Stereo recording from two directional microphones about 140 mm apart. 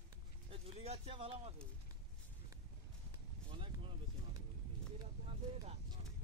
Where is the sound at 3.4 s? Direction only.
40° right (ahead or behind).